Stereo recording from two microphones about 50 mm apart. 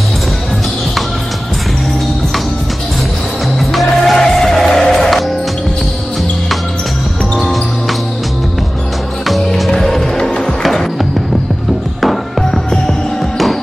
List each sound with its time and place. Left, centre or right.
3.5 s music: centre
9.8 s music: centre
12.0 s music: centre